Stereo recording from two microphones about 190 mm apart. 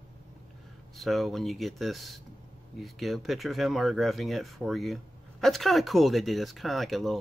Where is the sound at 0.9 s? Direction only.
Centre (ahead or behind).